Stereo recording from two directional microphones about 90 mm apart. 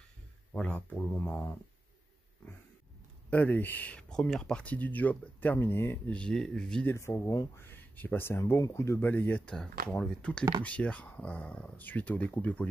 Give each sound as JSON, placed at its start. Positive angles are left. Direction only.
{"t": 0.5, "sound": "speech", "side_deg": 10}
{"t": 3.3, "sound": "speech", "side_deg": 20}
{"t": 6.0, "sound": "speech", "side_deg": 10}
{"t": 6.9, "sound": "speech", "side_deg": 30}
{"t": 9.5, "sound": "speech", "side_deg": 10}